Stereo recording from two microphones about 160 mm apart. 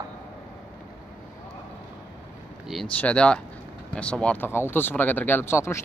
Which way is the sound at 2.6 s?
5° left (ahead or behind).